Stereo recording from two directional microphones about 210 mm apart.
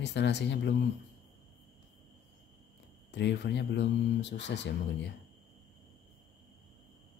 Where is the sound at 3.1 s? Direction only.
55° left (ahead or behind).